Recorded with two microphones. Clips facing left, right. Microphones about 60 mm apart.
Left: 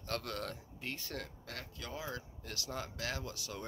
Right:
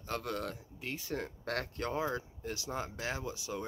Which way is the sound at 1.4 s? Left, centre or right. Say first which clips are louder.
Right 10 dB; right.